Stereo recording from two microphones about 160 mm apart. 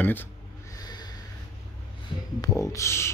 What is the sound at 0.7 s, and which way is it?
Snort, 25° left (ahead or behind).